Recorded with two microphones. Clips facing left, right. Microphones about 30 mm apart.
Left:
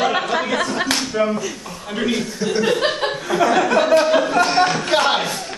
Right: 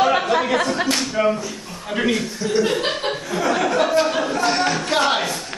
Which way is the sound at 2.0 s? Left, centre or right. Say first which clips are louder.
Right 1 dB; centre.